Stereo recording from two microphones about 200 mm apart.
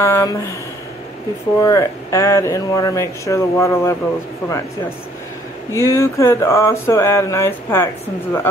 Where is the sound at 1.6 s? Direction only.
15° left (ahead or behind).